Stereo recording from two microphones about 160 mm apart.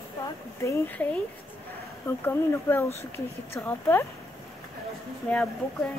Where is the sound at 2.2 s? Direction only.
15° left (ahead or behind).